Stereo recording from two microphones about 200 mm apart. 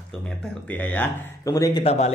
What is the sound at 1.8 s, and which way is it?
Speech, 30° left (ahead or behind).